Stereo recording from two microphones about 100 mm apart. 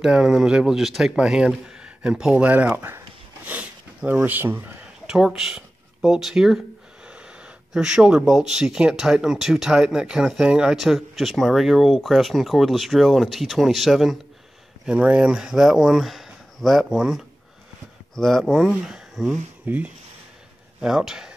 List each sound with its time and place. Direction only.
0.0 s speech: 5° right (ahead or behind); by 4.7 s 20° right (ahead or behind)
5.0 s speech: 5° right (ahead or behind)
14.9 s speech: 10° right (ahead or behind)
19.6 s speech: 15° right (ahead or behind)
20.8 s speech: 5° right (ahead or behind)